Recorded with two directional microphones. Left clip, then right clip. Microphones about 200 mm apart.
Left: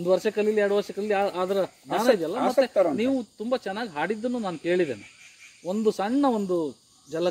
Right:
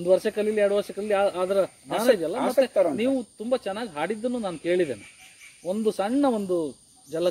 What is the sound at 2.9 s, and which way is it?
Speech, 10° left (ahead or behind).